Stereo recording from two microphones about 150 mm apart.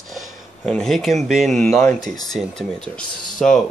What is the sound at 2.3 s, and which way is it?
Speech, 5° left (ahead or behind).